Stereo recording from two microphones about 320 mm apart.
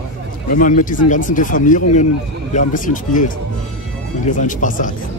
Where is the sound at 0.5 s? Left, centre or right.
Left.